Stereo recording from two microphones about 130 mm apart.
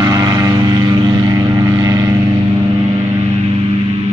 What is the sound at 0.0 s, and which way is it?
Vehicle, 30° right (ahead or behind).